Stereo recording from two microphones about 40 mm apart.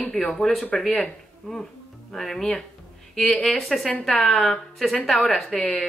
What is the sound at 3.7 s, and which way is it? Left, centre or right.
Speech, centre.